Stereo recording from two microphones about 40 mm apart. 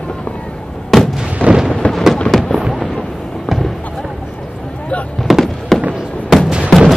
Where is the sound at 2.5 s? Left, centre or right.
Centre.